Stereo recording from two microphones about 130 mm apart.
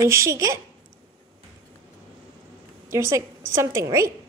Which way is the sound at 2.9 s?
20° right (ahead or behind).